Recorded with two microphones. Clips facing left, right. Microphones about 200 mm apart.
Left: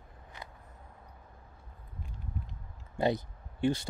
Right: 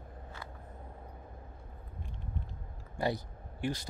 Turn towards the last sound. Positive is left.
turn(degrees=25)  # may be behind; listen again after turning